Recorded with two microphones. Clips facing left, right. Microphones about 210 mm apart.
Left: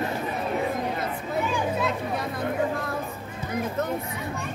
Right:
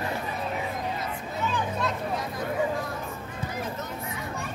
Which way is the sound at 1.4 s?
10° left (ahead or behind).